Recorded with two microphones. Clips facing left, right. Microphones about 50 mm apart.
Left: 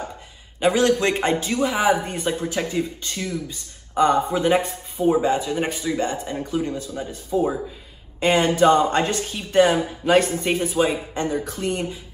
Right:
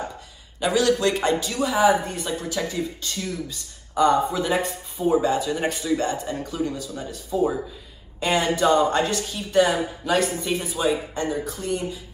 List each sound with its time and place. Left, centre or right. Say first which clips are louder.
0.6 s a man's voice: left 2 dB; left
5.7 s speech: right 1 dB; centre
5.9 s speech: left 1 dB; left
8.2 s a man's voice: left 4 dB; left